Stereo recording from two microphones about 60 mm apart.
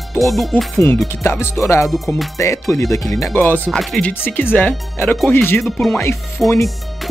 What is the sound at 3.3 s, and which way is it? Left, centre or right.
Speech, left.